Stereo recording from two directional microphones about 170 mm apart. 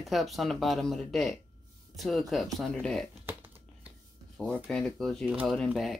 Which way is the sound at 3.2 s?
10° right (ahead or behind).